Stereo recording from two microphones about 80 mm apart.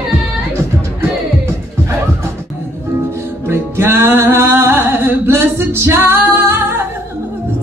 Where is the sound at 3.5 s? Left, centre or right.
Right.